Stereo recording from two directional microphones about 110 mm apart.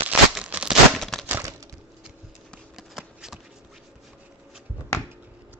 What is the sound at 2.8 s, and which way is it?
Shuffling cards, 5° right (ahead or behind).